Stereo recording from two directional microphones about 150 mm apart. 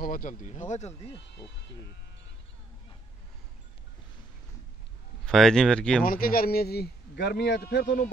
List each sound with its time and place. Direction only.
0.0 s speech: 65° left (ahead or behind); by 1.1 s 50° left (ahead or behind)
5.2 s speech: 5° left (ahead or behind)
6.0 s a man's voice: 75° left (ahead or behind)